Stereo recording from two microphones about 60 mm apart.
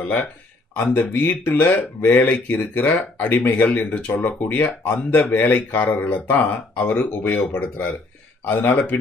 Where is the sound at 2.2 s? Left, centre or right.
Left.